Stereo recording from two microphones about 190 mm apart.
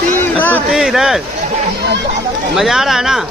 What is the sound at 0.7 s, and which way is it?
Speech, centre (ahead or behind).